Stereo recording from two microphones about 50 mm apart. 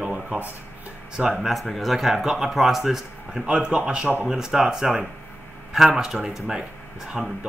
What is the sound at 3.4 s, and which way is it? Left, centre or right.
Speech, right.